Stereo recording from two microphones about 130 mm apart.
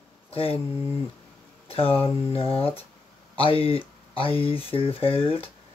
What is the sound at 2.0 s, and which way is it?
Speech, 45° left (ahead or behind).